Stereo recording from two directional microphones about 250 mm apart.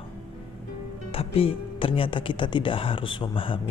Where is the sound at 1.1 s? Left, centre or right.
Left.